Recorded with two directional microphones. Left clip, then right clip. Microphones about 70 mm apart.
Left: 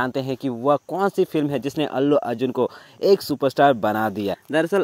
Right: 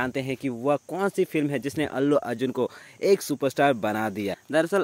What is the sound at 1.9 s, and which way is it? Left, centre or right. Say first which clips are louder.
Speech: left 4 dB; left.